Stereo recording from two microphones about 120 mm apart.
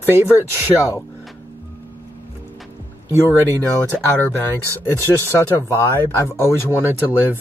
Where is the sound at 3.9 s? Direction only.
15° left (ahead or behind).